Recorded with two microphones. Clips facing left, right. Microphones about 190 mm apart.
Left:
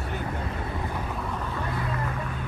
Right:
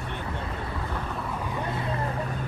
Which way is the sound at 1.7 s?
25° right (ahead or behind).